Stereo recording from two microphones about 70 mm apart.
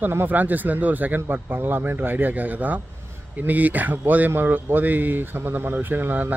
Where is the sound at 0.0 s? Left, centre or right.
Right.